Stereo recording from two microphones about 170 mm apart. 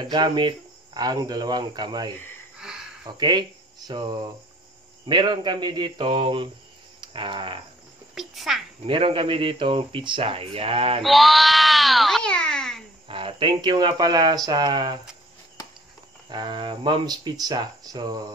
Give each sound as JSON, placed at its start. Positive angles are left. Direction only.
{"t": 0.0, "sound": "speech", "side_deg": -25}
{"t": 2.6, "sound": "a sound", "side_deg": -5}
{"t": 3.1, "sound": "speech", "side_deg": -25}
{"t": 7.0, "sound": "cricket", "side_deg": -30}
{"t": 8.1, "sound": "speech", "side_deg": 0}
{"t": 8.8, "sound": "speech", "side_deg": -30}
{"t": 11.1, "sound": "a sound", "side_deg": 0}
{"t": 13.1, "sound": "speech", "side_deg": -30}
{"t": 16.3, "sound": "speech", "side_deg": -25}